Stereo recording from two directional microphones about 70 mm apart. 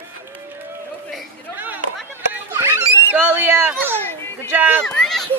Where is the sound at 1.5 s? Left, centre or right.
Right.